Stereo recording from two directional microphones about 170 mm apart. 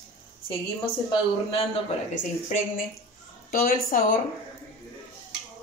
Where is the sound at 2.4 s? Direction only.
50° left (ahead or behind).